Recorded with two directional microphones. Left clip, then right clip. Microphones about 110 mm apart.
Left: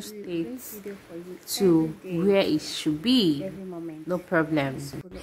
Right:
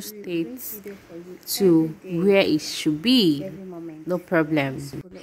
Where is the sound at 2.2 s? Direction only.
50° right (ahead or behind).